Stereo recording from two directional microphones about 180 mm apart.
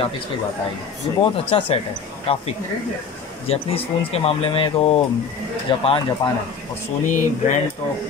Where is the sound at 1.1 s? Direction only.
30° left (ahead or behind).